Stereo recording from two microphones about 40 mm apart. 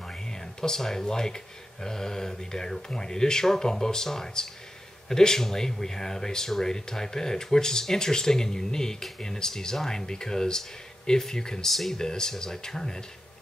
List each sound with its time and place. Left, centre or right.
0.1 s speech: centre
11.7 s speech: centre
12.0 s speech: centre